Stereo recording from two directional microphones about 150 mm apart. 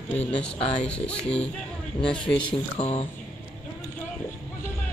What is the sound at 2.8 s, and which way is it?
Speech, 45° left (ahead or behind).